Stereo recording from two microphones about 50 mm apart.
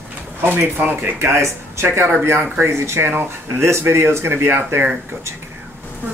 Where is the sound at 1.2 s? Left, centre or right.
Right.